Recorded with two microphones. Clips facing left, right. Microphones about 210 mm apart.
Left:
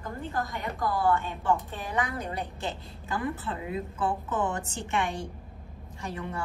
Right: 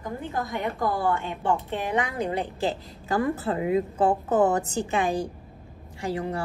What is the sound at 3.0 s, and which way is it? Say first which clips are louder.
A woman's voice: right 7 dB; 45° right (ahead or behind).